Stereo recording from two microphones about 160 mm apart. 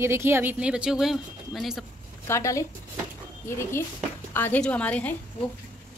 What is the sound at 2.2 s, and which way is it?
A woman's voice, 20° left (ahead or behind).